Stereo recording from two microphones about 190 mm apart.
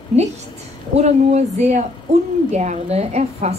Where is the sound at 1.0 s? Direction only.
35° right (ahead or behind).